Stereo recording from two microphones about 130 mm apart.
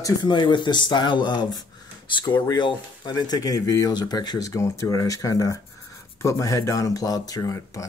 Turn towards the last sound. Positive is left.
turn(degrees=25)  # may be behind; listen again after turning